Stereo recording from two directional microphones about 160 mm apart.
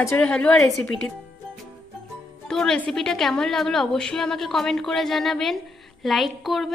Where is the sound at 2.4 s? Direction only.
5° left (ahead or behind).